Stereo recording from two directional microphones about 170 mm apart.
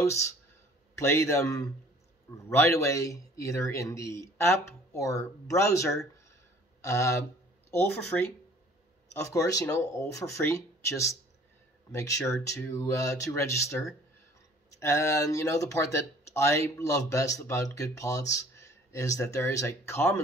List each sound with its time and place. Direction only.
0.9 s speech: 15° left (ahead or behind)
9.1 s speech: 20° left (ahead or behind)